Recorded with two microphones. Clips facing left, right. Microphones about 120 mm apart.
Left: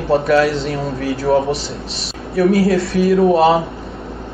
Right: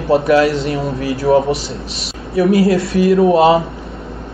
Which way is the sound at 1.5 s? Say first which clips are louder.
Right 1 dB; 65° right (ahead or behind).